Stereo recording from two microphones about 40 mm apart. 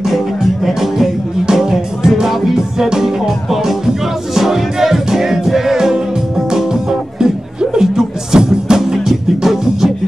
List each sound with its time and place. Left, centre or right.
0.7 s music: centre
4.4 s music: centre